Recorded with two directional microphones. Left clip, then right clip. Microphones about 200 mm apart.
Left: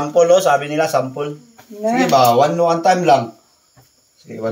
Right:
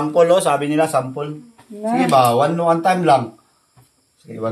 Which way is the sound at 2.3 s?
15° right (ahead or behind).